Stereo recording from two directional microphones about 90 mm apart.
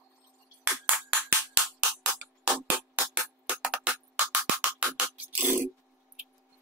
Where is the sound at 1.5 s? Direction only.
10° right (ahead or behind).